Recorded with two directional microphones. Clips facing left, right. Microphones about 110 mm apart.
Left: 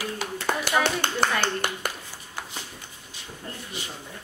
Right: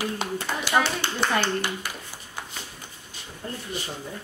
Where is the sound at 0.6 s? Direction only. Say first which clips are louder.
Right 1 dB; 55° left (ahead or behind).